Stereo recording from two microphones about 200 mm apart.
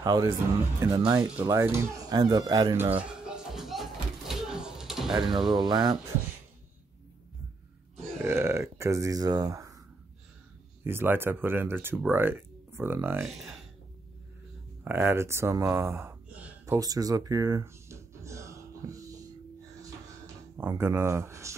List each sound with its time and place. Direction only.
0.0 s speech: 20° right (ahead or behind)
3.0 s music: 5° right (ahead or behind)
5.5 s speech: 20° right (ahead or behind)
8.2 s speech: 15° right (ahead or behind)
10.8 s speech: 10° right (ahead or behind)
13.2 s speech: centre (ahead or behind)
14.9 s a sound: 10° right (ahead or behind)
20.5 s speech: 10° right (ahead or behind)